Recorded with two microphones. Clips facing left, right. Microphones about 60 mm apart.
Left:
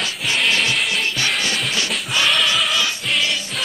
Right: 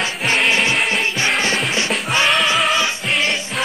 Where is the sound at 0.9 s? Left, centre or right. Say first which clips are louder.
Right 3 dB; right.